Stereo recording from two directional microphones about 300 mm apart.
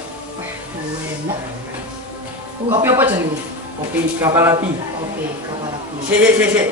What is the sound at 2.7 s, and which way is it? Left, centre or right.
Speech, centre.